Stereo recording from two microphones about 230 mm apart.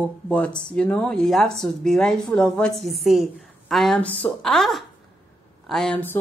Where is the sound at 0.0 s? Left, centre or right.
Centre.